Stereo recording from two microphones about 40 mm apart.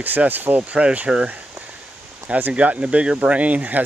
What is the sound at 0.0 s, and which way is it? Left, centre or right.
Speech, right.